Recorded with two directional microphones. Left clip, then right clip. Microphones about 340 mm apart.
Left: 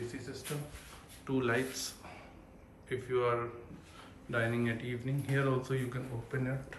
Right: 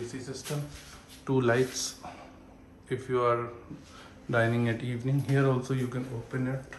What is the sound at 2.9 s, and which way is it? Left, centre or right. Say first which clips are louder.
Speech: right 5 dB; centre.